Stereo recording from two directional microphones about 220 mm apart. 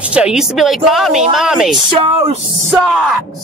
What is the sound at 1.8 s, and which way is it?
Speech, 25° right (ahead or behind).